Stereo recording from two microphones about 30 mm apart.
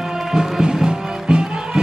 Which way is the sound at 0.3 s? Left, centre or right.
Right.